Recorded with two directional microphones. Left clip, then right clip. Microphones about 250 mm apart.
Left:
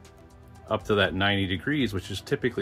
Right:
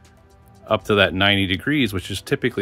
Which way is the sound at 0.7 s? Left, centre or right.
Right.